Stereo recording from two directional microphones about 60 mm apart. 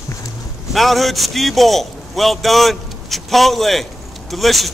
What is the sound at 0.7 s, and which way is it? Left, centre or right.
A man's voice, centre.